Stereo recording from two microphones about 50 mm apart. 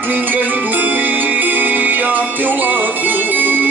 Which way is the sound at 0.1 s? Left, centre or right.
Right.